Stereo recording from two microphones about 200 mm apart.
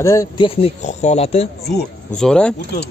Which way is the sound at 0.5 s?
30° left (ahead or behind).